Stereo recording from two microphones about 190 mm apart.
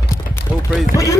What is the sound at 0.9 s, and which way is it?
Speech, 15° right (ahead or behind).